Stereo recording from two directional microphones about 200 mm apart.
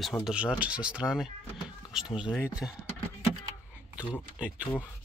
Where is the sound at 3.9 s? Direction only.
5° right (ahead or behind).